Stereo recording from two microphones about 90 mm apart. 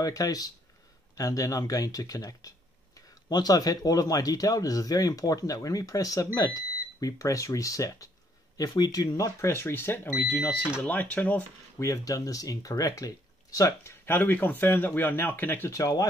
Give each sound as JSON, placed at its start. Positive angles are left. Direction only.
{"t": 0.0, "sound": "speech", "side_deg": 40}
{"t": 11.8, "sound": "speech", "side_deg": 40}
{"t": 15.7, "sound": "speech", "side_deg": 40}